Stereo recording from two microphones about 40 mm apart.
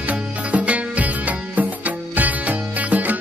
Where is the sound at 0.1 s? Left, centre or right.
Right.